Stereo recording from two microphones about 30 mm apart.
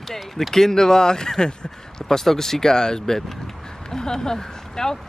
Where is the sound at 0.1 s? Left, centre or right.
Centre.